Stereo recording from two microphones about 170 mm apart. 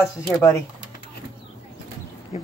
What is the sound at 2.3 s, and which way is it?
Speech, 40° left (ahead or behind).